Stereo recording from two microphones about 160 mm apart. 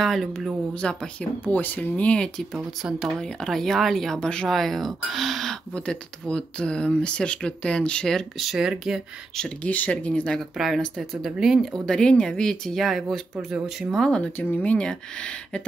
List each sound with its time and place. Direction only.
0.0 s speech: centre (ahead or behind)
9.6 s speech: 10° left (ahead or behind)